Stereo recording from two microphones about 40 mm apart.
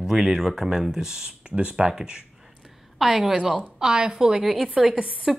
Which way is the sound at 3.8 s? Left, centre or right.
Centre.